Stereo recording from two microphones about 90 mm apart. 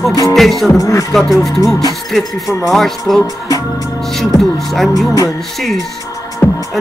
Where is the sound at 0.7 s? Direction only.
40° left (ahead or behind).